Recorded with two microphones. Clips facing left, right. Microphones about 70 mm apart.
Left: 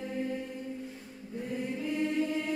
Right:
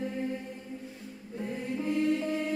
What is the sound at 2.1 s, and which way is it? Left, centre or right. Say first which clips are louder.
Chant: left 1 dB; right.